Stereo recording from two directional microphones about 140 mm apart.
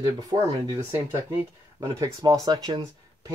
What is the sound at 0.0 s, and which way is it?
Speech, 25° right (ahead or behind).